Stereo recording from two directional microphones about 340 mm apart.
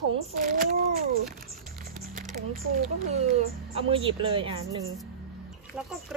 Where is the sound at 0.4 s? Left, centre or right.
Right.